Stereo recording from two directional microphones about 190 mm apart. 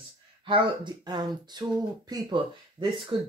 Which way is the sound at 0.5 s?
25° right (ahead or behind).